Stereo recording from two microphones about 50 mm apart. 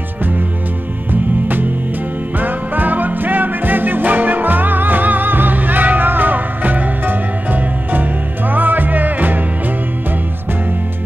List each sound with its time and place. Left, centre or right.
1.1 s music: right